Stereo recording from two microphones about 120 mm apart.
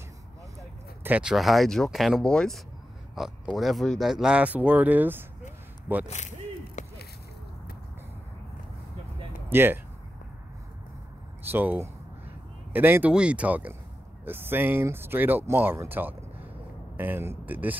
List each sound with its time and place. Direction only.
1.0 s speech: 15° right (ahead or behind)
1.3 s speech: centre (ahead or behind)
6.0 s a sound: 80° left
9.5 s speech: 20° right (ahead or behind)
11.4 s speech: 15° right (ahead or behind)